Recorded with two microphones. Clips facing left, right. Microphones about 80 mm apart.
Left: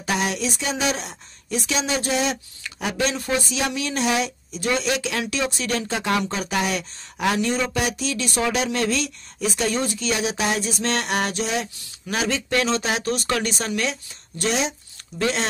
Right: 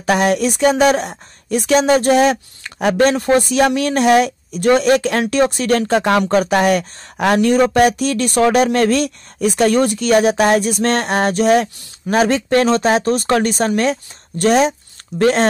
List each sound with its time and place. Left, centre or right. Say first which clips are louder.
0.0 s a woman's voice: right 9 dB; right